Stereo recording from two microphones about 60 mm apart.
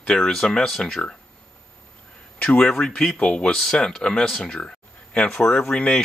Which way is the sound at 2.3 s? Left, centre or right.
Left.